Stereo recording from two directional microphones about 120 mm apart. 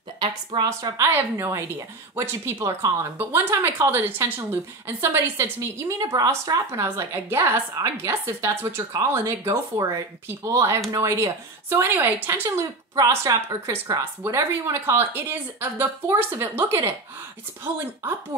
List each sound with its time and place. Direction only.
0.2 s a woman's voice: 35° right (ahead or behind); by 16.9 s 20° right (ahead or behind)